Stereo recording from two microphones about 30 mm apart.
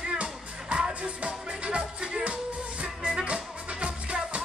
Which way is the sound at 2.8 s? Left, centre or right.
Right.